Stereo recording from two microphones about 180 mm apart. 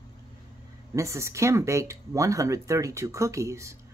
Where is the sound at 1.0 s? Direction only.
15° right (ahead or behind).